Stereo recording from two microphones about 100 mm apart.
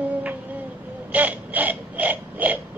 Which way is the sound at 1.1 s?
15° right (ahead or behind).